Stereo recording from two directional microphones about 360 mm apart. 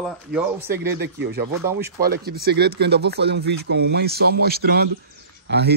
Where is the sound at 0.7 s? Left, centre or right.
Right.